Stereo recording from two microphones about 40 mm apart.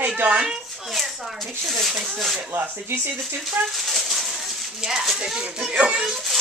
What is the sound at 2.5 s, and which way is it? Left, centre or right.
Speech, right.